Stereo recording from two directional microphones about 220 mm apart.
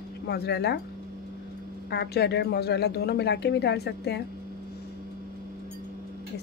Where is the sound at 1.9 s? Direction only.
50° left (ahead or behind).